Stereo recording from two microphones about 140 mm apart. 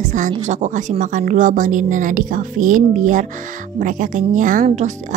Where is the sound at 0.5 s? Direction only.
60° right (ahead or behind).